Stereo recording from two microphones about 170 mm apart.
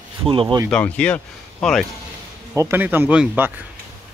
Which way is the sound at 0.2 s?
30° right (ahead or behind).